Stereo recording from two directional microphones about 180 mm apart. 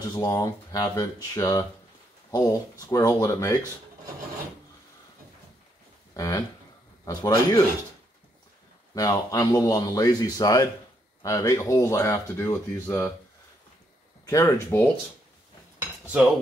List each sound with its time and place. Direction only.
0.0 s a man's voice: 20° left (ahead or behind)
6.1 s a man's voice: 20° left (ahead or behind)
8.9 s a man's voice: 20° left (ahead or behind)
14.2 s speech: 15° left (ahead or behind)